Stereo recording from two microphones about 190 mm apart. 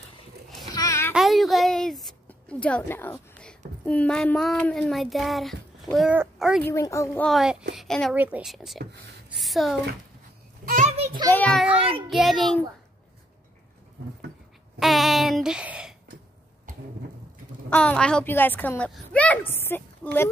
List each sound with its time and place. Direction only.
0.7 s a sound: 15° left (ahead or behind)
1.1 s a sound: centre (ahead or behind)
3.8 s child singing: 5° left (ahead or behind)
6.6 s a woman's voice: 15° left (ahead or behind)
7.2 s child singing: centre (ahead or behind)
7.7 s a woman's voice: centre (ahead or behind)
8.1 s child singing: 5° right (ahead or behind)
9.4 s speech: centre (ahead or behind)
10.6 s a sound: 50° right (ahead or behind)
11.2 s a woman's voice: 5° left (ahead or behind)
12.1 s child singing: centre (ahead or behind)
14.8 s child singing: centre (ahead or behind)
17.6 s a woman's voice: 5° left (ahead or behind)